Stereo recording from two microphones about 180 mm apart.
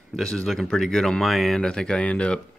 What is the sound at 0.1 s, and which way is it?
Speech, centre (ahead or behind).